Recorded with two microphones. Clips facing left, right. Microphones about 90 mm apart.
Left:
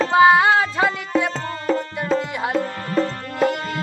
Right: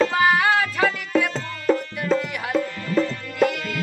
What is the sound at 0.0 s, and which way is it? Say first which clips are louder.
Music: left 5 dB; 30° left (ahead or behind).